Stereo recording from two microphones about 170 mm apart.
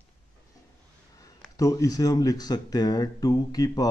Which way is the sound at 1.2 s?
20° left (ahead or behind).